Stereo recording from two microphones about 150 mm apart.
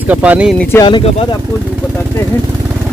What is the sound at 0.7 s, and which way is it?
Speech, 15° left (ahead or behind).